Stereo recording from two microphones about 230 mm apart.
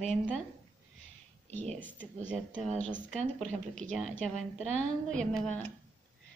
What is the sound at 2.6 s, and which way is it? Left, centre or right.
Speech, right.